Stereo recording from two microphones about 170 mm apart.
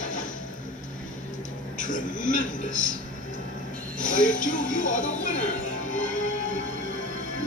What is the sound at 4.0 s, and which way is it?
Music, 50° left (ahead or behind).